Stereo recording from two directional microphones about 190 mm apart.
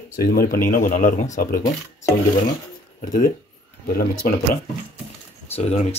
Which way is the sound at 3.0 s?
45° left (ahead or behind).